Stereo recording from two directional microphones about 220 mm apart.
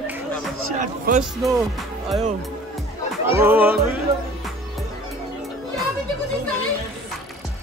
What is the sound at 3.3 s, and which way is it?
Speech, 10° right (ahead or behind).